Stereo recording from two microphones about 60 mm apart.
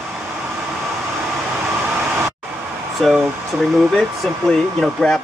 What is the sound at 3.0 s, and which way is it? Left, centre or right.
Speech, centre.